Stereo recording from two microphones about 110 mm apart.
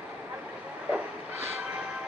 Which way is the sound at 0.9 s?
15° right (ahead or behind).